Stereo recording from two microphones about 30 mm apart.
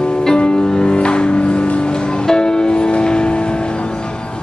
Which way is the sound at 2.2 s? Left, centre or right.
Left.